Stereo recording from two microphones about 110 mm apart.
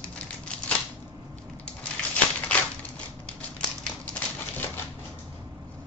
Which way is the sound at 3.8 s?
10° left (ahead or behind).